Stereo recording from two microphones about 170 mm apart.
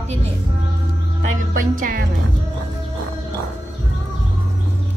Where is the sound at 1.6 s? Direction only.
50° right (ahead or behind).